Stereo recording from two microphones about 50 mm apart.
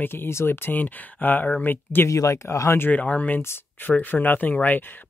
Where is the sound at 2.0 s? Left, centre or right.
Left.